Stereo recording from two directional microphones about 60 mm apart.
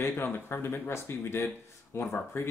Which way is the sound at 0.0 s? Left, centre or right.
Left.